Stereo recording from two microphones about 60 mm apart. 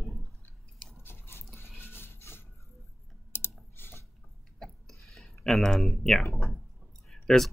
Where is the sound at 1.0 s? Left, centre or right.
Left.